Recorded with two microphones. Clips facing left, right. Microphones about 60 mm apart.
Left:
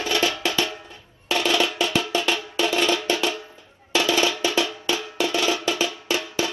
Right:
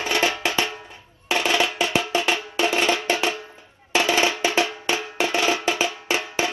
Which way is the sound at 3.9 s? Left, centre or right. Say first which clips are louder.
Right 1 dB; right.